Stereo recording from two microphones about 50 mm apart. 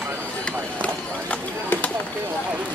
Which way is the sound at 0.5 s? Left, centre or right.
Left.